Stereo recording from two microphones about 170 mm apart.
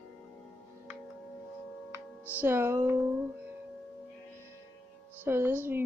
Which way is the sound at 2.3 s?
15° right (ahead or behind).